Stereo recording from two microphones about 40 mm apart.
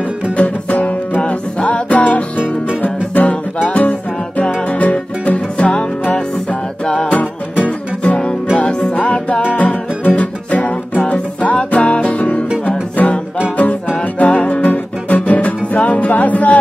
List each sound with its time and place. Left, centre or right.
0.4 s music: left
1.6 s music: left
7.1 s music: left
8.5 s music: left